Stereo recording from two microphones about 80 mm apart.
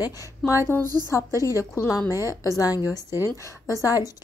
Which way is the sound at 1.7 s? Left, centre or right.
Left.